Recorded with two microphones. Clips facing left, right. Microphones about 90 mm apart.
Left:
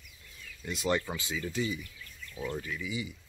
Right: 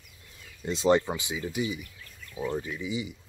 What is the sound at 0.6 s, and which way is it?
Speech, 25° right (ahead or behind).